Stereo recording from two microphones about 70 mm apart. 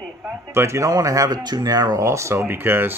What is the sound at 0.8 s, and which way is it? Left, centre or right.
Speech, right.